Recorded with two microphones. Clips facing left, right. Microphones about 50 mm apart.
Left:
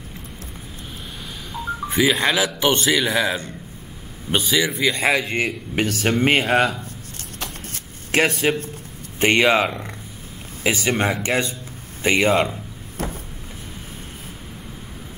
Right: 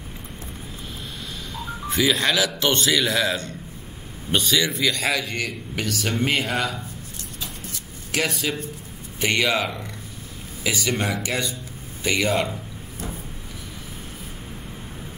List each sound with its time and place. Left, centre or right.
1.9 s a man's voice: centre; by 7.2 s left
7.3 s a sound: left
8.1 s a man's voice: left
12.9 s cupboard open or close: left